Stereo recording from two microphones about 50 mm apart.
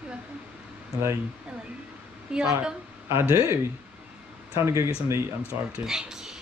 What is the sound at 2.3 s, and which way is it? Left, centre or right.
Speech, centre.